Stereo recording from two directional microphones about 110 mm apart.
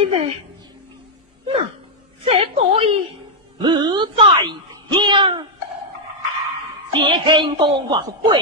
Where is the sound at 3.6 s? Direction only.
40° right (ahead or behind).